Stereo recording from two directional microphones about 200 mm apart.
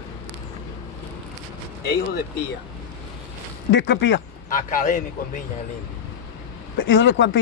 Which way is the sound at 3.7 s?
65° left (ahead or behind).